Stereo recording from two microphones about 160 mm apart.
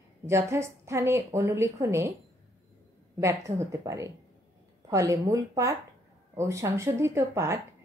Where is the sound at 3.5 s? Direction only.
20° right (ahead or behind).